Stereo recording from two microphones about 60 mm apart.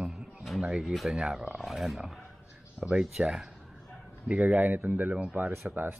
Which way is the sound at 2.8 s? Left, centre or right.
Centre.